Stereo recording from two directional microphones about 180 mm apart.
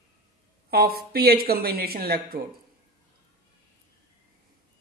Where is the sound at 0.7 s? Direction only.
60° right (ahead or behind).